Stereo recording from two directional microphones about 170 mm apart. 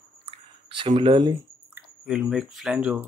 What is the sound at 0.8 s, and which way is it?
Speech, 30° right (ahead or behind).